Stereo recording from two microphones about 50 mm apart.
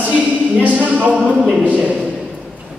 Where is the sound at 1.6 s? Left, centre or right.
Right.